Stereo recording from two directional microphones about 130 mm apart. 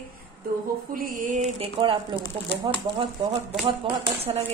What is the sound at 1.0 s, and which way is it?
Mantra, 75° right (ahead or behind).